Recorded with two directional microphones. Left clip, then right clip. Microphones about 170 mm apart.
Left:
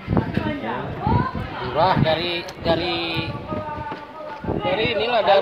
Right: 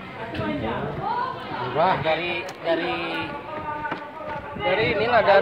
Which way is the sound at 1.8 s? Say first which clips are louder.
Left 3 dB; 55° left (ahead or behind).